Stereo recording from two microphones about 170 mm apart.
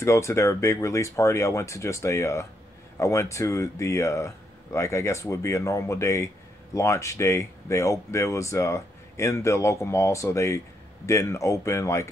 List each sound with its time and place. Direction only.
0.0 s speech: 15° left (ahead or behind)